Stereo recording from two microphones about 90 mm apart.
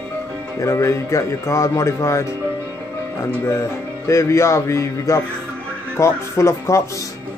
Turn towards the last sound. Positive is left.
turn(degrees=30)  # may be behind; listen again after turning